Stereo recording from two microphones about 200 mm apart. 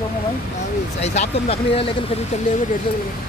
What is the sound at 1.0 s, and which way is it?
Speech, 35° left (ahead or behind).